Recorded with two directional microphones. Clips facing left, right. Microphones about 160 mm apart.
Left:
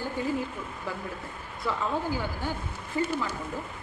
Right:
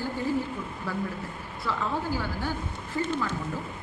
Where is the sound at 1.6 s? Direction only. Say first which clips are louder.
Left 1 dB; 15° left (ahead or behind).